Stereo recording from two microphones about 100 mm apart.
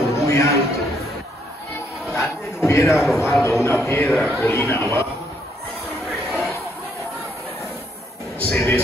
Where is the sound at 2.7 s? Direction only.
30° left (ahead or behind).